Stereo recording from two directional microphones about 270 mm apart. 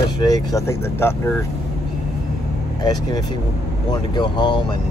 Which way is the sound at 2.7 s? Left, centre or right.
Centre.